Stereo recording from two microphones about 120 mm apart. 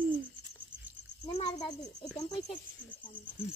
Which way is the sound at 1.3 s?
55° left (ahead or behind).